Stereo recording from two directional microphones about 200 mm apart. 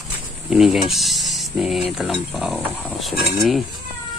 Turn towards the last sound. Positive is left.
turn(degrees=0)  # may be behind; listen again after turning